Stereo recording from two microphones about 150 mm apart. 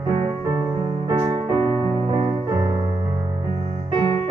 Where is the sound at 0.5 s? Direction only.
25° right (ahead or behind).